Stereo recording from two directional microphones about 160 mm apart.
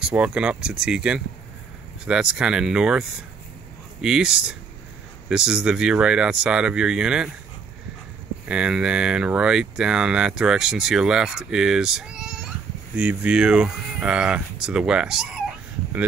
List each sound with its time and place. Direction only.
0.0 s speech: 5° right (ahead or behind)
8.5 s speech: 5° right (ahead or behind)